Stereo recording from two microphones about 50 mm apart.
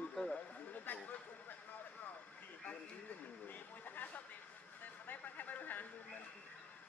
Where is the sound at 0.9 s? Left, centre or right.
Left.